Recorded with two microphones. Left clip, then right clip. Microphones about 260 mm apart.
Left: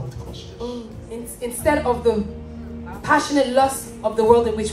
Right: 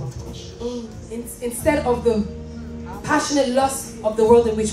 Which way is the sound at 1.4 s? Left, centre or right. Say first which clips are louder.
Even; centre.